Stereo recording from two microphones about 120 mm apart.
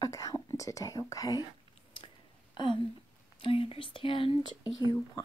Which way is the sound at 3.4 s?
50° left (ahead or behind).